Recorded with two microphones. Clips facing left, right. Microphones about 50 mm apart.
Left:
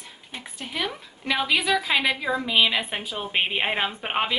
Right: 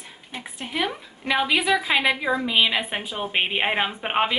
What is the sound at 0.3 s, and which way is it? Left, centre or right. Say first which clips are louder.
A woman's voice: right 3 dB; centre.